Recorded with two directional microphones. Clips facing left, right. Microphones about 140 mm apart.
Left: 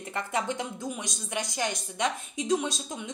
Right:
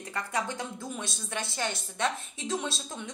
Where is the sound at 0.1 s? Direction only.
20° left (ahead or behind).